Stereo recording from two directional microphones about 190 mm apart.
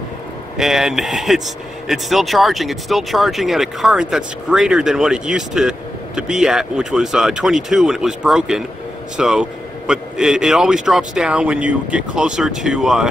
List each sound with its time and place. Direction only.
0.6 s speech: centre (ahead or behind)